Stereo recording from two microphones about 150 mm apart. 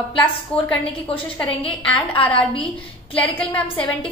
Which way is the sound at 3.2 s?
10° left (ahead or behind).